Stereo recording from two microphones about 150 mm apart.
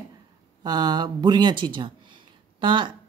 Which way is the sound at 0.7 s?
30° right (ahead or behind).